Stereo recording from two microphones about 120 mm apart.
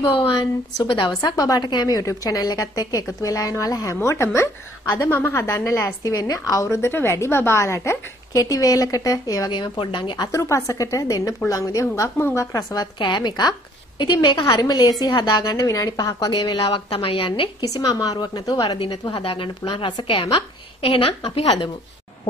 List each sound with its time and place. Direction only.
0.0 s a woman's voice: 40° left (ahead or behind)
16.9 s a woman's voice: 50° left (ahead or behind)